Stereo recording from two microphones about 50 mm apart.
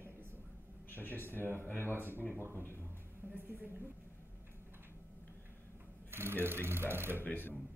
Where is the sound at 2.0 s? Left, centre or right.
Right.